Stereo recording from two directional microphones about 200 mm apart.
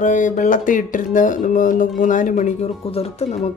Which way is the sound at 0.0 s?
40° left (ahead or behind).